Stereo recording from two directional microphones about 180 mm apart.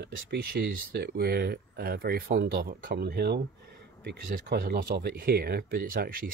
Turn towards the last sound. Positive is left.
turn(degrees=-55)  # may be behind; listen again after turning